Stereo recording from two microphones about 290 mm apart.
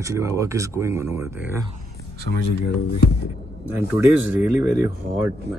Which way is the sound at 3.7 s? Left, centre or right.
Centre.